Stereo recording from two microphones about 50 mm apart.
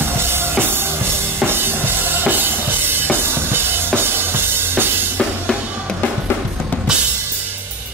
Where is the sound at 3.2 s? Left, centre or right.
Right.